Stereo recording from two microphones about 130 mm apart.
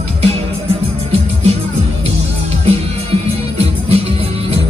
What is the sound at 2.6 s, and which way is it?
Music, 50° right (ahead or behind).